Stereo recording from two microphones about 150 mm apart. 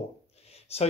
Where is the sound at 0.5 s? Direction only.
45° left (ahead or behind).